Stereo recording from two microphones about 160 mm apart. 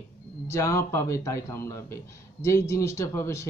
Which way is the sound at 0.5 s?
20° left (ahead or behind).